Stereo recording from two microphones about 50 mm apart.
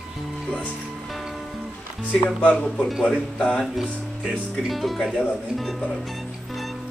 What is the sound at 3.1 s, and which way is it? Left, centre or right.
Speech, centre.